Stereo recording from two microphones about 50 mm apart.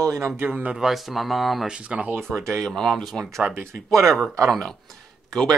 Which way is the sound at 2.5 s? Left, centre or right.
Centre.